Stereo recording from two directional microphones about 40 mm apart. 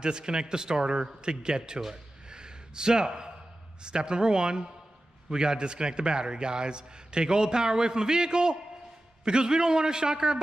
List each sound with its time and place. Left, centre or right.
0.0 s a man's voice: right
2.2 s a sound: right
3.8 s a man's voice: right